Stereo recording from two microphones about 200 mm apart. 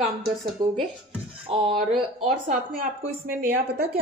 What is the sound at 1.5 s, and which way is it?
Speech, 30° right (ahead or behind).